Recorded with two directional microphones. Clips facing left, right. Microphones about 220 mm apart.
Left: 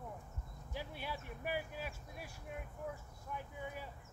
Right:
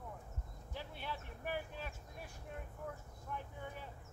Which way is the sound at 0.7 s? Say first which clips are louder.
Left 2 dB; 10° left (ahead or behind).